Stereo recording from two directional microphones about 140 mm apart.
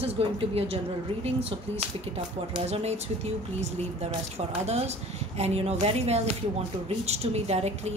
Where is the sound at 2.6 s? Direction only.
50° right (ahead or behind).